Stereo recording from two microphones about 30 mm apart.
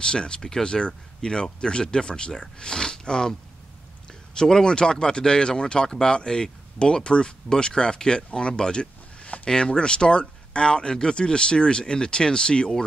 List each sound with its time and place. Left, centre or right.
0.0 s speech: left
4.4 s speech: centre
4.6 s speech: left
9.2 s a sound: left
9.5 s speech: left